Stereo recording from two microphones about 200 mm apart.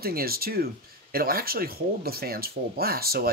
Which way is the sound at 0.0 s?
50° right (ahead or behind).